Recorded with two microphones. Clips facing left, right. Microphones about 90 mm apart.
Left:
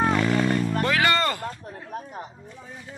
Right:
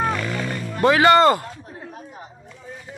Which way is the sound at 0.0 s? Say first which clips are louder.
Left 2 dB; 25° left (ahead or behind).